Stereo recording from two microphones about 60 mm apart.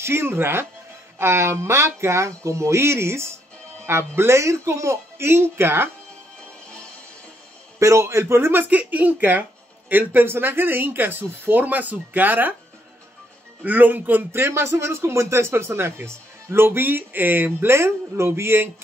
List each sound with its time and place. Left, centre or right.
0.0 s a man's voice: right
7.8 s a man's voice: right
8.6 s speech: right
13.7 s a man's voice: right